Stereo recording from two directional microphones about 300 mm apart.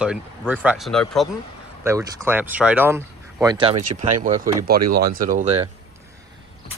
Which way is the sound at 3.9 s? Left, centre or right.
Right.